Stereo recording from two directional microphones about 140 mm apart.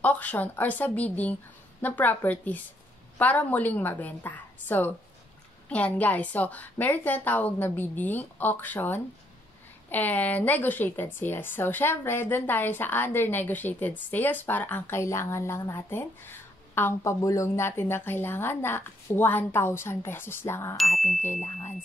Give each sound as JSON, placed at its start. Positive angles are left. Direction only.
{"t": 0.0, "sound": "a woman's voice", "side_deg": 10}
{"t": 20.7, "sound": "music", "side_deg": 0}
{"t": 21.2, "sound": "a sound", "side_deg": 60}